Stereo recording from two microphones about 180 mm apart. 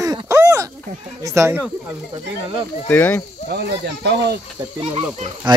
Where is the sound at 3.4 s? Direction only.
65° right (ahead or behind).